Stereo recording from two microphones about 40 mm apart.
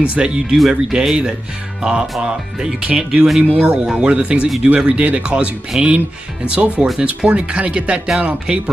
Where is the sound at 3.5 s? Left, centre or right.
Right.